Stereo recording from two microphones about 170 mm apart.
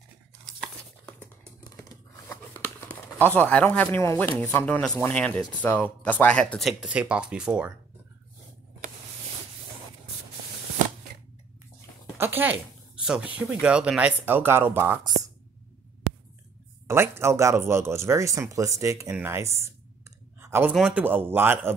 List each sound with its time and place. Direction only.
1.6 s speech: 20° left (ahead or behind); by 7.7 s 5° right (ahead or behind)
12.2 s speech: 10° right (ahead or behind)
16.8 s speech: 15° right (ahead or behind)
20.3 s a sound: 15° right (ahead or behind)
20.7 s speech: 5° right (ahead or behind)